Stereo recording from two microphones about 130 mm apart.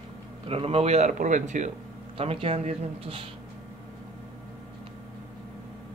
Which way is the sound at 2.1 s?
45° right (ahead or behind).